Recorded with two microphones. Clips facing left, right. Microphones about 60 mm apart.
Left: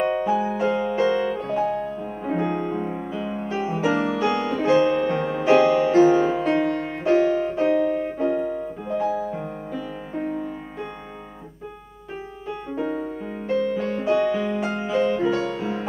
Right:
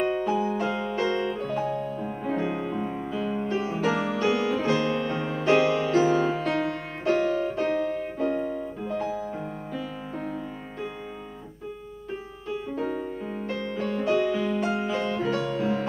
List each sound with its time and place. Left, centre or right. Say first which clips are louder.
0.0 s music: left 3 dB; centre
2.4 s music: left 4 dB; centre
10.1 s music: left 7 dB; centre
12.6 s music: left 4 dB; centre